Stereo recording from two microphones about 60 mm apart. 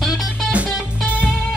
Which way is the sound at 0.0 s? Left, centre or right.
Centre.